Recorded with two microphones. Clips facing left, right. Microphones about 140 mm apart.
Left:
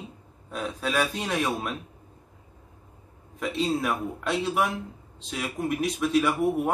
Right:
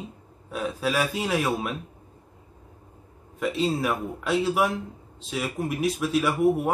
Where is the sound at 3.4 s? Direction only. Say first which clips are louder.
Right 2 dB; centre (ahead or behind).